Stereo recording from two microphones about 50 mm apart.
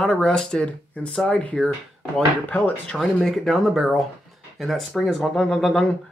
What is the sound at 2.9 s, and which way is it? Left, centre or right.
Speech, centre.